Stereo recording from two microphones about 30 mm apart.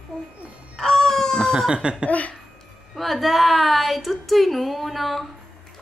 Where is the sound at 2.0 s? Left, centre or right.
Left.